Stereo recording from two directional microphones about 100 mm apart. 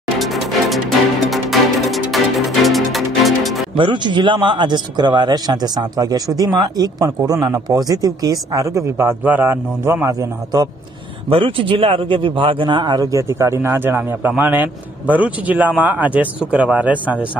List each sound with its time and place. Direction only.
0.2 s music: centre (ahead or behind)
3.7 s speech: 55° right (ahead or behind); by 10.1 s 25° right (ahead or behind)
11.2 s a man's voice: 65° right (ahead or behind); by 17.3 s 15° right (ahead or behind)